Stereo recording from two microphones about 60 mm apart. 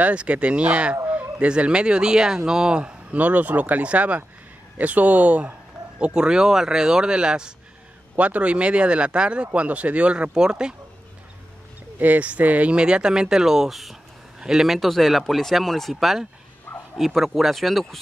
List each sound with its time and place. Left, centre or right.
0.0 s speech: centre
12.0 s speech: right; by 18.0 s centre